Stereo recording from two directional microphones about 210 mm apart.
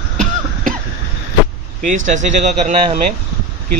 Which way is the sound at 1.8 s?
35° right (ahead or behind).